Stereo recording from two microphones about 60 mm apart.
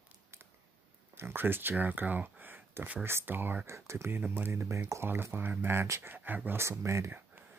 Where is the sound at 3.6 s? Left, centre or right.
Right.